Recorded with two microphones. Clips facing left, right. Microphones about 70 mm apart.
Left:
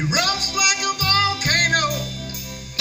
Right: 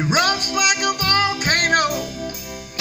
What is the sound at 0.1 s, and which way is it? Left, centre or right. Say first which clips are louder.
Music: right 6 dB; right.